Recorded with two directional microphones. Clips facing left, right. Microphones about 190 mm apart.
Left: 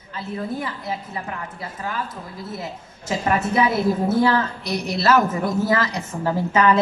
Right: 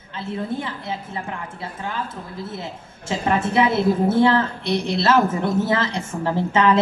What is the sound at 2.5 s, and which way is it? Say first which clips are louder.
A woman's voice: even; 25° right (ahead or behind).